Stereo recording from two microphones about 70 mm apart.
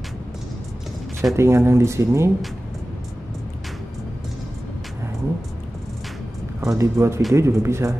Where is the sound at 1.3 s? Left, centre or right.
Right.